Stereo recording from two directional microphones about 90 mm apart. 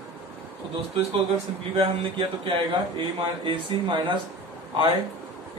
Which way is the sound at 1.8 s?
85° right.